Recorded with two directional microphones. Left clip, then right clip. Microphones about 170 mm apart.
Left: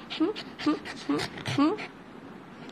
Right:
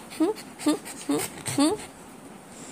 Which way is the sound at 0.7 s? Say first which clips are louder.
Right 3 dB; 20° right (ahead or behind).